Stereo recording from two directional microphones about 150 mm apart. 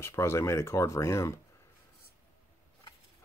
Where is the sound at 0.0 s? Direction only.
15° left (ahead or behind).